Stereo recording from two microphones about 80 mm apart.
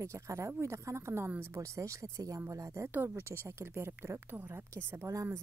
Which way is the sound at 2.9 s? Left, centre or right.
Right.